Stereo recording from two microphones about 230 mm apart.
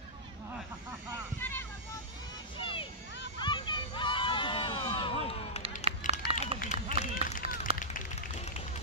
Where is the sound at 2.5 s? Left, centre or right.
Left.